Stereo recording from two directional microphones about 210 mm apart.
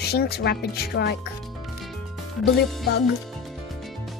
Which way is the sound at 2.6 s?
50° left (ahead or behind).